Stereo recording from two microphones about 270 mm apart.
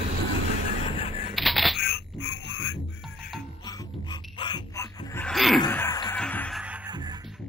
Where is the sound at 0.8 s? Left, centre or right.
Left.